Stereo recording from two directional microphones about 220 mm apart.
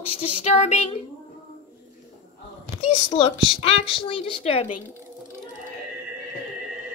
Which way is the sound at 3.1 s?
25° left (ahead or behind).